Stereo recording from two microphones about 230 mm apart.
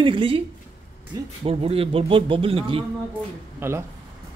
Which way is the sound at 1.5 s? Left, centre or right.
Right.